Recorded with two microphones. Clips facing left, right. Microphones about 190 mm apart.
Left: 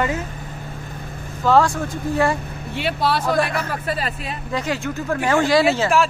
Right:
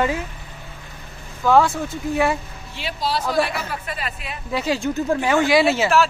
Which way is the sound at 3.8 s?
35° left (ahead or behind).